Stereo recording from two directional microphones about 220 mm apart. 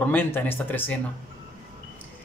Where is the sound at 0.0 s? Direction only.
10° left (ahead or behind).